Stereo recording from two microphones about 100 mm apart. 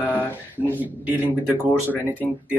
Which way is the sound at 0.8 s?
15° right (ahead or behind).